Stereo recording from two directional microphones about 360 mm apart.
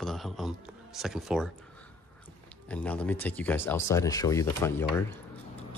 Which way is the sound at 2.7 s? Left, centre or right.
Centre.